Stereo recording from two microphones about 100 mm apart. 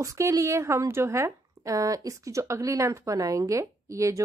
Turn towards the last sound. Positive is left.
turn(degrees=-30)  # may be behind; listen again after turning